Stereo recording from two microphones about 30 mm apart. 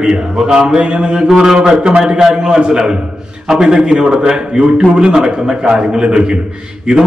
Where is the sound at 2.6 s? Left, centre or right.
Right.